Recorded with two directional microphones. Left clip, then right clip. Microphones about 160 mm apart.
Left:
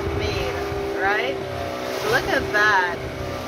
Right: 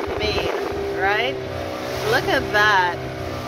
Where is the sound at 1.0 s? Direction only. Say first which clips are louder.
Right 1 dB; 20° right (ahead or behind).